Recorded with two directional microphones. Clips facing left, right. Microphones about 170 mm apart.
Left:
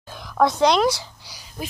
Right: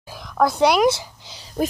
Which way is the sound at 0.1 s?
Centre (ahead or behind).